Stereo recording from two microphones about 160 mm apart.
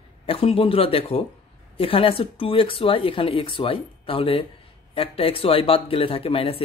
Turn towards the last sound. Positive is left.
turn(degrees=35)  # may be behind; listen again after turning